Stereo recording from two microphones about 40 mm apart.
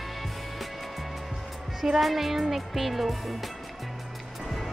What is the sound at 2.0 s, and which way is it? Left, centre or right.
Speech, centre.